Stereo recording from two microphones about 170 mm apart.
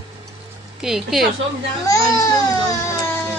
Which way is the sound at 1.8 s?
20° left (ahead or behind).